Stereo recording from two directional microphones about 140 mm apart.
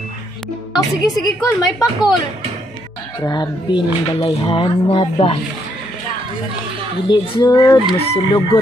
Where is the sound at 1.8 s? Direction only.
25° left (ahead or behind).